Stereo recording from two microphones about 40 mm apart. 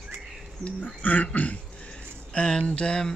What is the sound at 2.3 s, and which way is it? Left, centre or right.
Speech, left.